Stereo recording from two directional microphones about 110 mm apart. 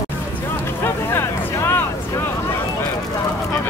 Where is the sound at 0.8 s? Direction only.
25° left (ahead or behind).